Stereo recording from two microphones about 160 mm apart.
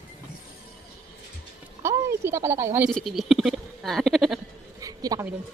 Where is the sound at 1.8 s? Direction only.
15° right (ahead or behind).